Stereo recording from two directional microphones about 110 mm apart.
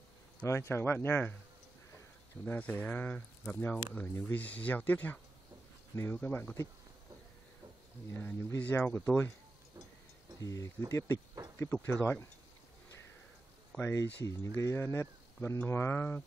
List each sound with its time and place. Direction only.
0.4 s speech: 25° left (ahead or behind)
2.4 s speech: 15° left (ahead or behind)
8.1 s speech: 20° left (ahead or behind)
10.4 s speech: 30° left (ahead or behind)
13.7 s speech: 25° left (ahead or behind)